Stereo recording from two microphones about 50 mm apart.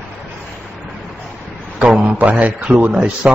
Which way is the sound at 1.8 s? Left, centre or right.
Centre.